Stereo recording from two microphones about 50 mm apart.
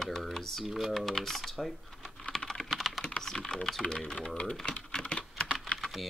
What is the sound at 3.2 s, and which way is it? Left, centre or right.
Speech, centre.